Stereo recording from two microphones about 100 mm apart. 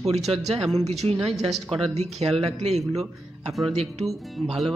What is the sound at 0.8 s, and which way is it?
Speech, 90° right.